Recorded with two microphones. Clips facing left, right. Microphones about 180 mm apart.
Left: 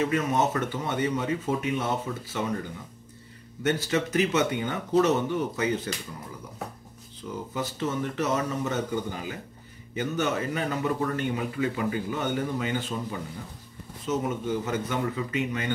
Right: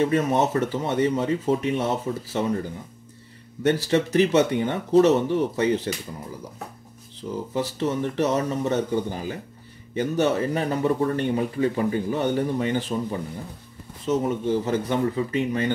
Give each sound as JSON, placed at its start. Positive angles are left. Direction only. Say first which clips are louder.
{"t": 0.0, "sound": "speech", "louder": "right 4 dB", "side_deg": -30}
{"t": 3.6, "sound": "speech", "louder": "right 5 dB", "side_deg": -35}
{"t": 7.5, "sound": "speech", "louder": "right 4 dB", "side_deg": -30}